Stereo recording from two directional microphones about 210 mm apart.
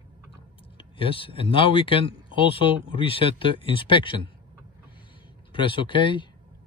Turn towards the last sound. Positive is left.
turn(degrees=25)  # may be behind; listen again after turning